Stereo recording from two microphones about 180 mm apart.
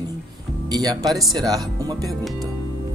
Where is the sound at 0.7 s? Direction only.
20° right (ahead or behind).